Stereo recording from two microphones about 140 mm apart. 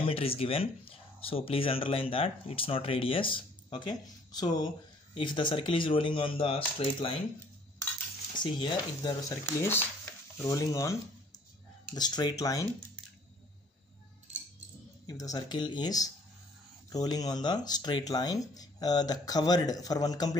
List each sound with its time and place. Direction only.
0.0 s speech: 40° left (ahead or behind)
8.4 s speech: 35° left (ahead or behind)
9.3 s speech: 15° left (ahead or behind)
15.0 s speech: 25° left (ahead or behind)